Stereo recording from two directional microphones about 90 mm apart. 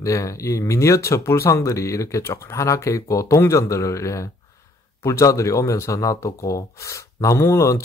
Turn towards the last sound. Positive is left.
turn(degrees=35)  # may be behind; listen again after turning